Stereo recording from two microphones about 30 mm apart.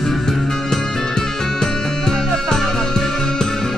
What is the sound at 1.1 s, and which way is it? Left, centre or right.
Music, left.